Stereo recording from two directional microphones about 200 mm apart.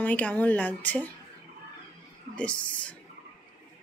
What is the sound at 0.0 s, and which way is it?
A woman's voice, 5° left (ahead or behind).